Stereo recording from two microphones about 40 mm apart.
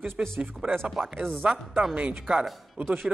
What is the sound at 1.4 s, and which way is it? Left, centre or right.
Speech, right.